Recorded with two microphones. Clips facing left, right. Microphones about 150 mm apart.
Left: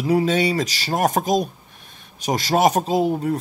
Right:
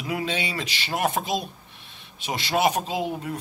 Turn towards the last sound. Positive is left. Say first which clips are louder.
# left 8 dB
turn(degrees=40)  # may be behind; listen again after turning